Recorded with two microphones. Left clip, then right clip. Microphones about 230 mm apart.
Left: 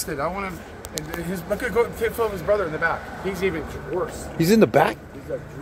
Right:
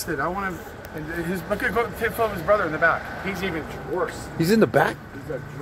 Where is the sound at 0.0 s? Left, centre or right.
Left.